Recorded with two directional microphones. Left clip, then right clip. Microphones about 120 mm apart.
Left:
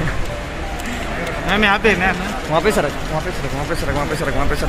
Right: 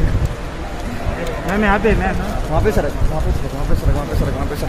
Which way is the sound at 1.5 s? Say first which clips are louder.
Left 2 dB; 60° right (ahead or behind).